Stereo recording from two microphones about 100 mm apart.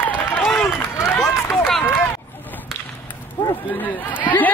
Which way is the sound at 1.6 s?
Centre (ahead or behind).